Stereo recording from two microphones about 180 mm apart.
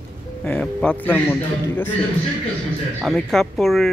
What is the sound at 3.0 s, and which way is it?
Speech, centre (ahead or behind).